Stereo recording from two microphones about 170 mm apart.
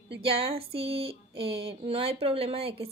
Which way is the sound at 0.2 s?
35° right (ahead or behind).